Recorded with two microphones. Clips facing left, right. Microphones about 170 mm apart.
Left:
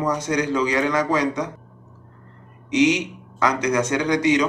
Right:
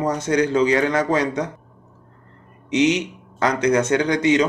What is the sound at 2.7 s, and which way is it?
Speech, 25° right (ahead or behind).